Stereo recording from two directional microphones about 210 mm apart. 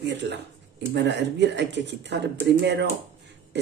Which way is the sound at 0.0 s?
55° right (ahead or behind).